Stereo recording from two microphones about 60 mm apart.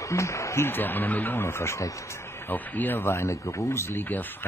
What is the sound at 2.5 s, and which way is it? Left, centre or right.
Speech, left.